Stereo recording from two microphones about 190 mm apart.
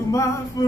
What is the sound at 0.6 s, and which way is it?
Mantra, 20° left (ahead or behind).